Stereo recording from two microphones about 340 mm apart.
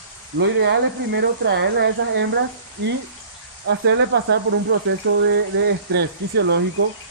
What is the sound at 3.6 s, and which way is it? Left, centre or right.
Speech, right.